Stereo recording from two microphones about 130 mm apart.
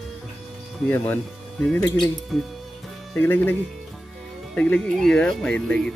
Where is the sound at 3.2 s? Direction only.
15° left (ahead or behind).